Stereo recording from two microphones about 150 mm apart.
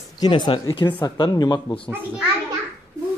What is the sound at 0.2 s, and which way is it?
A man's voice, 35° left (ahead or behind).